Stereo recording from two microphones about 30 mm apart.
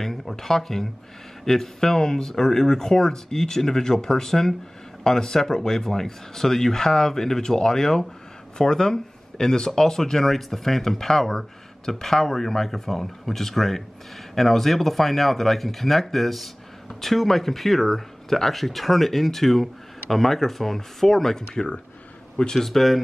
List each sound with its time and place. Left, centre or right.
0.0 s speech: centre
22.6 s speech: centre